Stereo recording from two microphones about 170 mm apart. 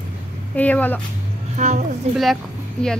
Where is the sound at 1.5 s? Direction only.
45° right (ahead or behind).